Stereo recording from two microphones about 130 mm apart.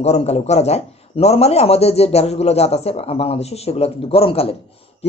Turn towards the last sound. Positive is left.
turn(degrees=50)  # may be behind; listen again after turning